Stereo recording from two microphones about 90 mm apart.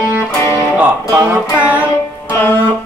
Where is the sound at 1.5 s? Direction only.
15° right (ahead or behind).